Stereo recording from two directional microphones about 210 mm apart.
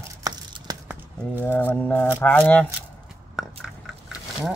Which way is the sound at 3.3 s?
Centre (ahead or behind).